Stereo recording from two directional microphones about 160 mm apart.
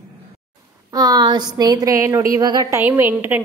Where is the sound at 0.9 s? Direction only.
25° right (ahead or behind).